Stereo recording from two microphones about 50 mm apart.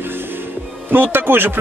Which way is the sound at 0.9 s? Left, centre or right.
Right.